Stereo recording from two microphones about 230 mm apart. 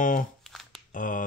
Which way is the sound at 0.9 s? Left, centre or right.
Left.